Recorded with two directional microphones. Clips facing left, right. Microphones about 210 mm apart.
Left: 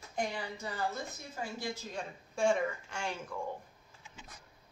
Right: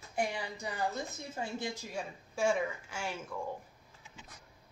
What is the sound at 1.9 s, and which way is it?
A woman's voice, 5° right (ahead or behind).